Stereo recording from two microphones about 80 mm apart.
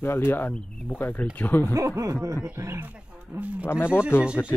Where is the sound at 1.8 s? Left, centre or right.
Right.